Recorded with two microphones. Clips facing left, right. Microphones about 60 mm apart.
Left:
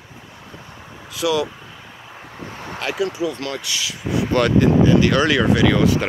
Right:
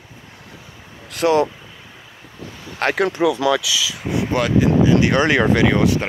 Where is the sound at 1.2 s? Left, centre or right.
Right.